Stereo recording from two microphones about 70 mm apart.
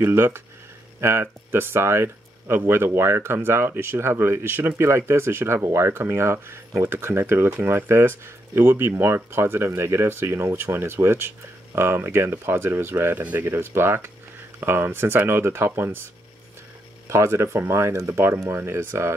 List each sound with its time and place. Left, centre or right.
0.0 s speech: right
17.1 s speech: right
18.2 s speech: right